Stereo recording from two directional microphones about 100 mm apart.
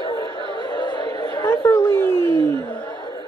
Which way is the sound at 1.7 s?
25° left (ahead or behind).